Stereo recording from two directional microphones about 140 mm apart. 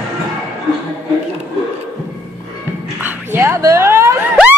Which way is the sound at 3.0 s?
15° right (ahead or behind).